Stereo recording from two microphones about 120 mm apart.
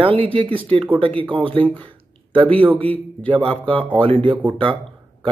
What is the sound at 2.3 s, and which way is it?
Speech, 50° right (ahead or behind).